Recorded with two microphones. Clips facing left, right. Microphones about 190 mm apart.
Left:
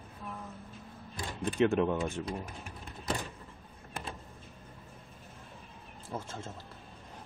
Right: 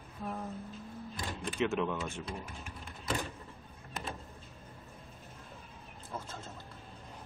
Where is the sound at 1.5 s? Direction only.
55° left (ahead or behind).